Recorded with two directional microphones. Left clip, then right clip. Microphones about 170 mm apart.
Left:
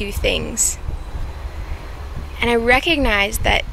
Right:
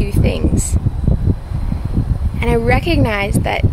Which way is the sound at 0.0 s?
10° right (ahead or behind).